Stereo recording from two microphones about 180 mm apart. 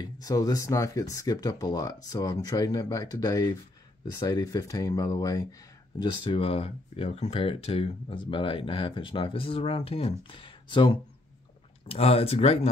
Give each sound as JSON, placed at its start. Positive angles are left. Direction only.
{"t": 0.0, "sound": "speech", "side_deg": 20}